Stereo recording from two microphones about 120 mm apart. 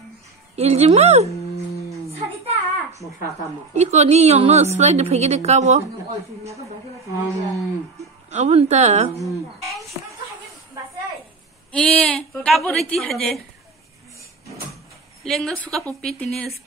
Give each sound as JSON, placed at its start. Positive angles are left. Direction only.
{"t": 0.6, "sound": "a woman's voice", "side_deg": -60}
{"t": 2.0, "sound": "a sound", "side_deg": -60}
{"t": 3.7, "sound": "a woman's voice", "side_deg": -65}
{"t": 8.3, "sound": "a woman's voice", "side_deg": -65}
{"t": 9.2, "sound": "speech", "side_deg": 0}
{"t": 11.7, "sound": "a woman's voice", "side_deg": 10}
{"t": 15.2, "sound": "a woman's voice", "side_deg": 5}